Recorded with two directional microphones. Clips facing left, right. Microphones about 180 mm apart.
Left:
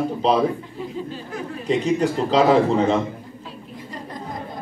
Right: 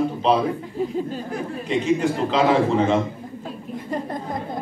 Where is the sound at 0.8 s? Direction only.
40° right (ahead or behind).